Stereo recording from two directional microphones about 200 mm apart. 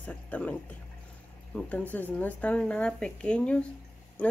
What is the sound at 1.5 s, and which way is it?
Speech, 5° left (ahead or behind).